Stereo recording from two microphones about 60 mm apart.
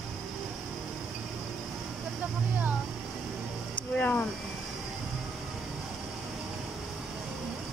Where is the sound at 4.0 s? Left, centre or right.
Left.